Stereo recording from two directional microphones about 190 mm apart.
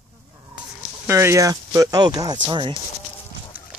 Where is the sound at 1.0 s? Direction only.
15° right (ahead or behind).